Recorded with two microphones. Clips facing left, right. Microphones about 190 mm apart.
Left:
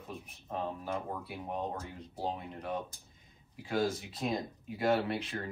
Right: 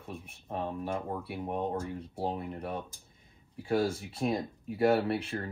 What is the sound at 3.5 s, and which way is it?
Speech, 30° right (ahead or behind).